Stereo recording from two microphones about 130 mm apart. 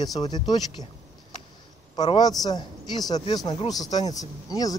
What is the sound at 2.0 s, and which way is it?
Speech, 35° left (ahead or behind).